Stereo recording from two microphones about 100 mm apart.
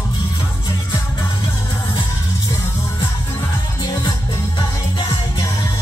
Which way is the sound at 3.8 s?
45° left (ahead or behind).